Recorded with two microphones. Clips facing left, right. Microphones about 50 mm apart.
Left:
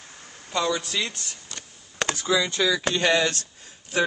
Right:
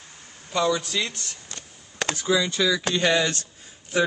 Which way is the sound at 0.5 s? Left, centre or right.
Centre.